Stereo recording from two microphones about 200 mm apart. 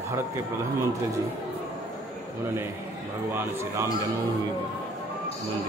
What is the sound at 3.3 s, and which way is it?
Speech, 10° right (ahead or behind).